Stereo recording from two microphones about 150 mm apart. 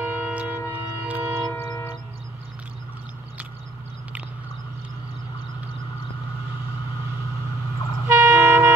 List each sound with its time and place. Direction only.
0.0 s music: 10° right (ahead or behind)
1.7 s a sound: 20° left (ahead or behind)
8.1 s train: 15° right (ahead or behind)